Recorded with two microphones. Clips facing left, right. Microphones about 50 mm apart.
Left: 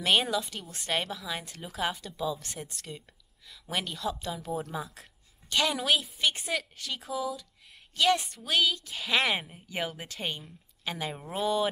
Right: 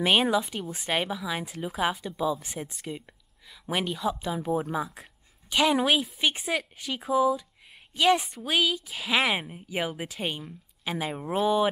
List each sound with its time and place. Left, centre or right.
0.0 s a woman's voice: centre